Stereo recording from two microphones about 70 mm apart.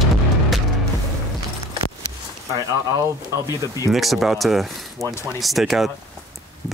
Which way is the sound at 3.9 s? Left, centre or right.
Centre.